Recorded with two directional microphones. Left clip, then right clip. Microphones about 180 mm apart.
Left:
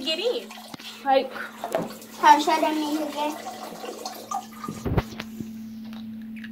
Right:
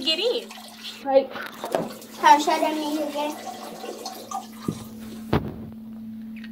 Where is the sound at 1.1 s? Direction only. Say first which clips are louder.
Right 1 dB; 90° left.